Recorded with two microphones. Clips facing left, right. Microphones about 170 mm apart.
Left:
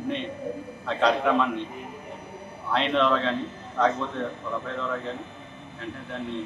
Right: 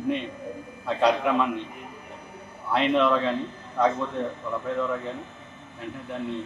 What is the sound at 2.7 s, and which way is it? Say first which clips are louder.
Speech: right 2 dB; 10° right (ahead or behind).